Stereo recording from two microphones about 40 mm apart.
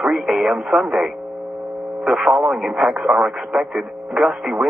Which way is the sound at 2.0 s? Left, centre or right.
Centre.